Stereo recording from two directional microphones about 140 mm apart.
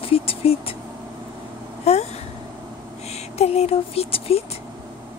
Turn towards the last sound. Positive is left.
turn(degrees=45)  # may be behind; listen again after turning